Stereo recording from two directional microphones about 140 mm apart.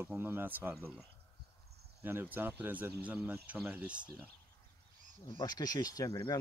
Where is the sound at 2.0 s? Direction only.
15° right (ahead or behind).